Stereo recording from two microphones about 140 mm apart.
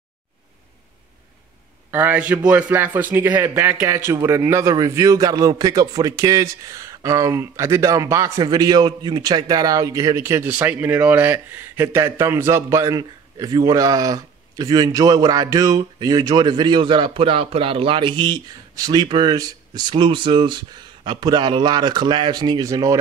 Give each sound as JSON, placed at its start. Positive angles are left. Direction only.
{"t": 1.9, "sound": "speech", "side_deg": -10}